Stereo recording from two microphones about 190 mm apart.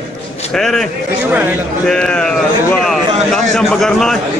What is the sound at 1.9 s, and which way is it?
Speech, 5° left (ahead or behind).